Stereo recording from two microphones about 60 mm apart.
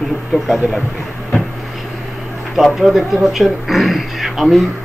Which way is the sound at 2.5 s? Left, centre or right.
Centre.